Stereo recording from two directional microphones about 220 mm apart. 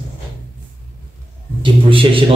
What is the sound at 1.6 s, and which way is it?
Speech, 25° right (ahead or behind).